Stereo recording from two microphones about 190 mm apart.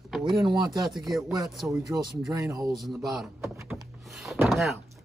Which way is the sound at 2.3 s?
20° right (ahead or behind).